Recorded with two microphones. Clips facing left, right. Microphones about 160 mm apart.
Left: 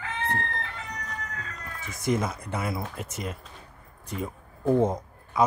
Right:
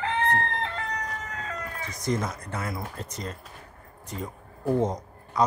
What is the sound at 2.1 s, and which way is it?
Speech, 10° left (ahead or behind).